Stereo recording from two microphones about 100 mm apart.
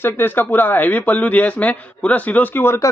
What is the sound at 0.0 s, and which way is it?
A man's voice, 20° left (ahead or behind).